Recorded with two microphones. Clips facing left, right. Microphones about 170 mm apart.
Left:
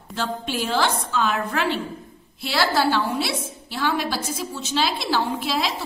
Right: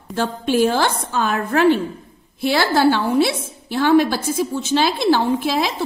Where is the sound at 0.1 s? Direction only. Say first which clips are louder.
Right 7 dB; 50° right (ahead or behind).